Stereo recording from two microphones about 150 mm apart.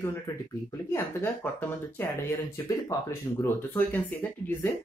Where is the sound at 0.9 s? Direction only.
15° left (ahead or behind).